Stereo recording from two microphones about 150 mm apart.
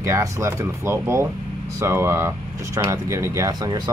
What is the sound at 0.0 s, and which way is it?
Speech, 20° right (ahead or behind).